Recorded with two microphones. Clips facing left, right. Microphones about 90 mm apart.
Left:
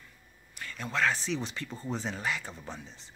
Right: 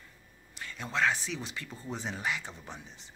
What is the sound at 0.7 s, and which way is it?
Speech, 20° right (ahead or behind).